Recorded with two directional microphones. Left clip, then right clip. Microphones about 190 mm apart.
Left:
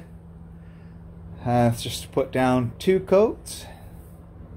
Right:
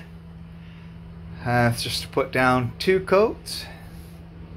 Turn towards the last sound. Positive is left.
turn(degrees=25)  # may be behind; listen again after turning